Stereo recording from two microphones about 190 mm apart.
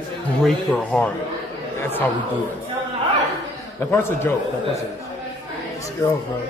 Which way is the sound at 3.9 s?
10° left (ahead or behind).